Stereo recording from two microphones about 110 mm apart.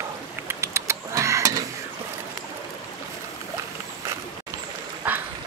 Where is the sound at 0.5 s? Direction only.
25° right (ahead or behind).